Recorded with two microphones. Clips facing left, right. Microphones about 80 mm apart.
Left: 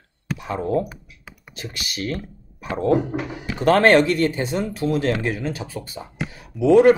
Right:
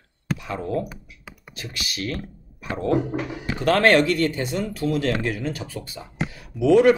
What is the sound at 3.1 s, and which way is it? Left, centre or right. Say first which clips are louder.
Speech: even; centre.